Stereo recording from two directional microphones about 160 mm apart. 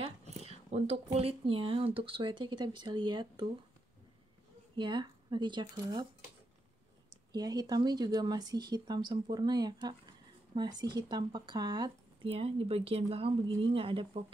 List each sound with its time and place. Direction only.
0.0 s a sound: 40° right (ahead or behind)
1.1 s speech: 35° right (ahead or behind)
4.7 s speech: 30° right (ahead or behind)
7.3 s speech: 25° right (ahead or behind)